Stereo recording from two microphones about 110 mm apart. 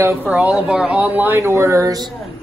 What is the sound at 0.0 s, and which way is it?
Speech, 15° right (ahead or behind).